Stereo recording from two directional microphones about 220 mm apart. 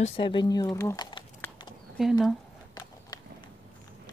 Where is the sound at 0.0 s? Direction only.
25° left (ahead or behind).